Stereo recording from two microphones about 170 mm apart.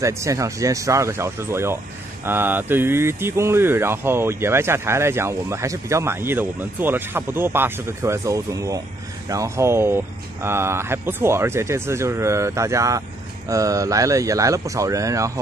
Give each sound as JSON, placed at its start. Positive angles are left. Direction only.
{"t": 0.0, "sound": "speech", "side_deg": -20}